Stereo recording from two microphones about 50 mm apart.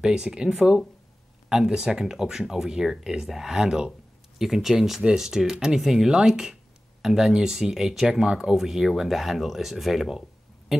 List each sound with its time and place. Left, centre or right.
0.0 s speech: centre